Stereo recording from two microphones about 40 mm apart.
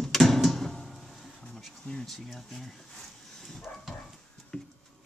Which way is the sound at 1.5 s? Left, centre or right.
Centre.